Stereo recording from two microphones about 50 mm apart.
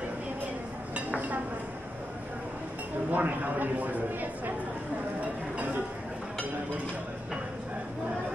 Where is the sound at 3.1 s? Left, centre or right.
Right.